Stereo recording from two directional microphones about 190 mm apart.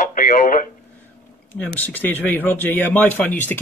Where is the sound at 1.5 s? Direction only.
10° left (ahead or behind).